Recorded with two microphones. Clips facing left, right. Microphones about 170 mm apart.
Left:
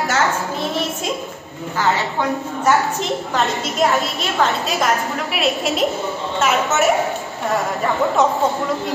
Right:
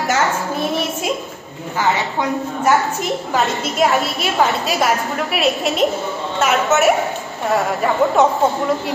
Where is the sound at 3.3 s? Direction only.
Centre (ahead or behind).